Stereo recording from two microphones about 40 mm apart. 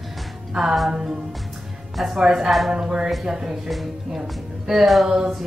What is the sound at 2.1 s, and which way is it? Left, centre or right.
Music, centre.